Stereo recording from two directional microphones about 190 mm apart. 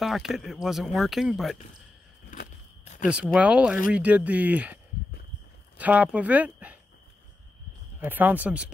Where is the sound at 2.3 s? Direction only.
40° left (ahead or behind).